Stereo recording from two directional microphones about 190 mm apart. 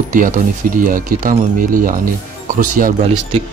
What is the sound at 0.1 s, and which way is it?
Speech, 45° right (ahead or behind).